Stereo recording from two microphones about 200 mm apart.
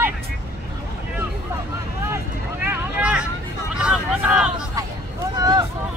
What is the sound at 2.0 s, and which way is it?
Vehicle, 10° right (ahead or behind).